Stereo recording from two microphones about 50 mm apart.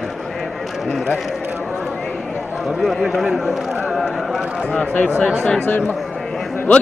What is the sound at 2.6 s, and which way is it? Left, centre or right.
Run, centre.